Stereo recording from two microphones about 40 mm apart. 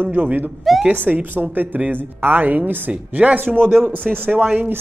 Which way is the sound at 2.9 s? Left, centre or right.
Right.